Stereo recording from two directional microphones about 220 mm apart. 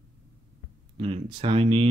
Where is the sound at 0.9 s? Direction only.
25° right (ahead or behind).